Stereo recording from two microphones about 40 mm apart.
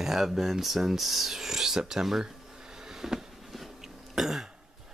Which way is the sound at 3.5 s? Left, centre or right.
Centre.